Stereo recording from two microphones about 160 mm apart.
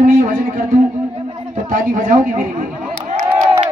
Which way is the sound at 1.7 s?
60° right (ahead or behind).